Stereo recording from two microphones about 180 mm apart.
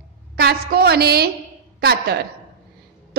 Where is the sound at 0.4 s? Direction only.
60° right (ahead or behind).